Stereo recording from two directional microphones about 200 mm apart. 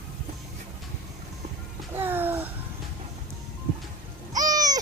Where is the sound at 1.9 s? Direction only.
10° right (ahead or behind).